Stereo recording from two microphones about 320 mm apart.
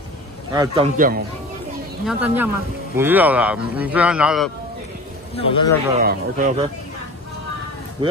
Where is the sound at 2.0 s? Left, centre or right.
Centre.